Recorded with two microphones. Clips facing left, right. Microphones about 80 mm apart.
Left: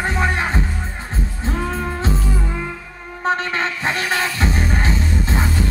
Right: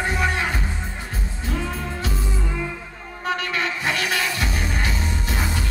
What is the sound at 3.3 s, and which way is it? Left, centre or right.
Music, left.